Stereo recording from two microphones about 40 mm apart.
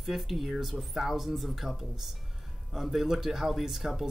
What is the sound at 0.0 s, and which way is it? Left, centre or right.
Speech, centre.